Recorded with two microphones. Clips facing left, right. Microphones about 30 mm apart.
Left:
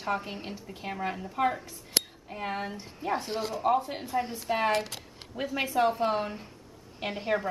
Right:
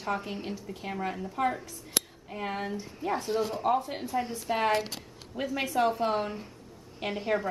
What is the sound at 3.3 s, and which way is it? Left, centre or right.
Speech, left.